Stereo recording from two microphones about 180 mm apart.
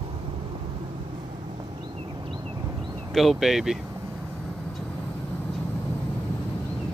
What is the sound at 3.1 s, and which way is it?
Speech, centre (ahead or behind).